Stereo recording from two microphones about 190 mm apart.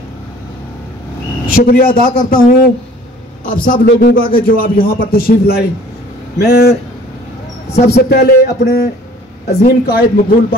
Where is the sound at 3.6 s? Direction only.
50° left (ahead or behind).